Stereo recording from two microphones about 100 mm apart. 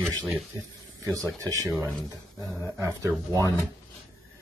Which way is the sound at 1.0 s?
30° right (ahead or behind).